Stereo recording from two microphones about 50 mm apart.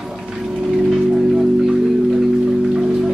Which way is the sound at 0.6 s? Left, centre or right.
Centre.